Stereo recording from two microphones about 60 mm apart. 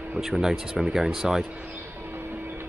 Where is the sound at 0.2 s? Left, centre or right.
Centre.